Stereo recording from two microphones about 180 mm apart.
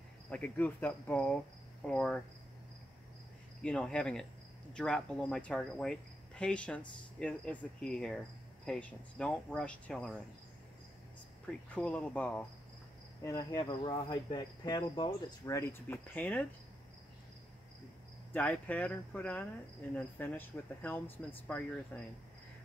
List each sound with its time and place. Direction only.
0.3 s speech: 10° left (ahead or behind)
3.6 s speech: 5° left (ahead or behind)
11.7 s speech: 5° left (ahead or behind)
13.2 s cricket: 15° left (ahead or behind)
18.3 s speech: 10° left (ahead or behind)